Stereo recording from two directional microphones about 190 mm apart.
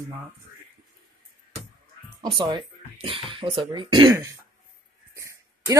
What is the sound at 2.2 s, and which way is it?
Speech, 25° right (ahead or behind).